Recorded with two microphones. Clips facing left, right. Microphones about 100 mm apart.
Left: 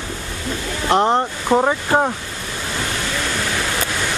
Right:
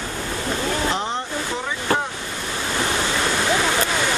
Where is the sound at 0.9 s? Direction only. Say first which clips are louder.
Left 9 dB; 60° left (ahead or behind).